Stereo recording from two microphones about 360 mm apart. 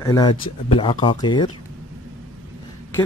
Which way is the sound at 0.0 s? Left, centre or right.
Centre.